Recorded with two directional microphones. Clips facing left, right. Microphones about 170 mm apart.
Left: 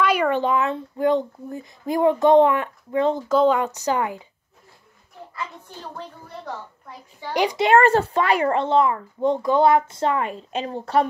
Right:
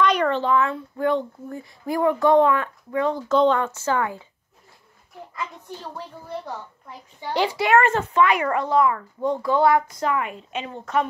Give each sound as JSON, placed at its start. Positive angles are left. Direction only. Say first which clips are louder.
{"t": 0.0, "sound": "speech", "louder": "left 1 dB", "side_deg": 10}
{"t": 3.3, "sound": "a woman's voice", "louder": "right 2 dB", "side_deg": 10}
{"t": 7.3, "sound": "speech", "louder": "left 2 dB", "side_deg": 20}